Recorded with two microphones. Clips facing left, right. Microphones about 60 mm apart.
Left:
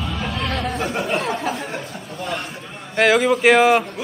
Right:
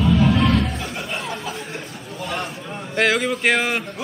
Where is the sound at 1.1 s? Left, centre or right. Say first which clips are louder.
Left 6 dB; left.